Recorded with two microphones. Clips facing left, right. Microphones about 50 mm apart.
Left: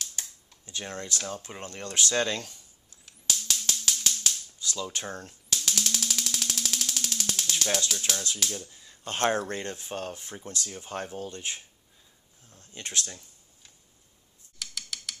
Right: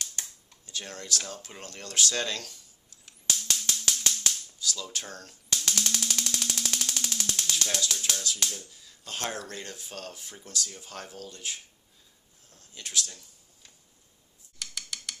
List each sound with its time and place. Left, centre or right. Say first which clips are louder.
0.0 s computer keyboard: even; centre
0.7 s speech: left 3 dB; left
1.1 s speech: left 1 dB; centre
3.1 s a sound: even; centre
4.6 s speech: left 1 dB; left
5.7 s a sound: even; centre
8.1 s speech: left 1 dB; centre
8.7 s speech: left 5 dB; left
12.4 s a sound: left 3 dB; left
14.6 s computer keyboard: even; centre